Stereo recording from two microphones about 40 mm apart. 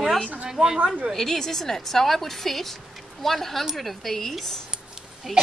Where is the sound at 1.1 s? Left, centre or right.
Centre.